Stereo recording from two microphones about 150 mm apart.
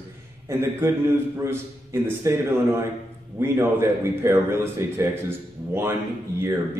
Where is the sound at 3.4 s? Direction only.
15° right (ahead or behind).